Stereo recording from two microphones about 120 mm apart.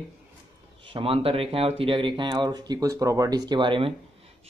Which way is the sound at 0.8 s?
50° right (ahead or behind).